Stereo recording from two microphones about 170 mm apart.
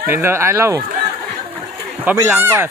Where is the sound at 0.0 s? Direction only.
15° right (ahead or behind).